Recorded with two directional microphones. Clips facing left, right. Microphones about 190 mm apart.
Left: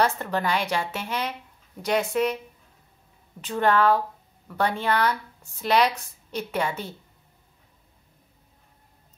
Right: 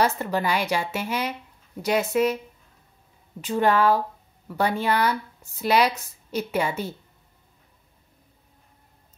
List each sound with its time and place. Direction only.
0.0 s a woman's voice: 10° right (ahead or behind)
3.3 s a woman's voice: 10° right (ahead or behind)